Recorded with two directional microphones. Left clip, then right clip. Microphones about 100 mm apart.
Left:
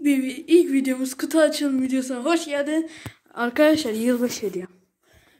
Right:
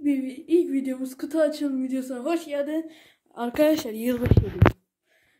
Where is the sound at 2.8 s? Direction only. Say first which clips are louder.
Left 8 dB; 25° right (ahead or behind); by 4.2 s 10° right (ahead or behind).